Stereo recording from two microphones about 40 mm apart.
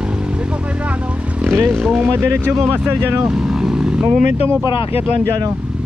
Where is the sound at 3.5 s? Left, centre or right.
Centre.